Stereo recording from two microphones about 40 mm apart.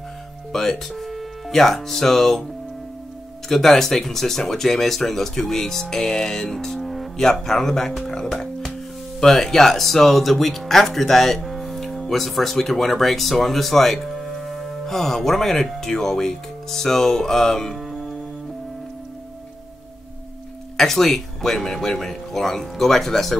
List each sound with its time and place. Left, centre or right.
0.5 s speech: centre
3.4 s speech: centre
7.2 s speech: centre
8.0 s music: centre
9.2 s speech: centre
20.7 s speech: centre